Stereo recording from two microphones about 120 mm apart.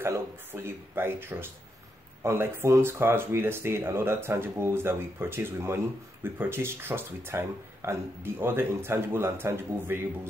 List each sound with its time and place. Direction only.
0.0 s speech: 20° right (ahead or behind)